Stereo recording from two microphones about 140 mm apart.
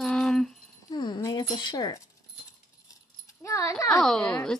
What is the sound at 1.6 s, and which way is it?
Speech, 30° left (ahead or behind).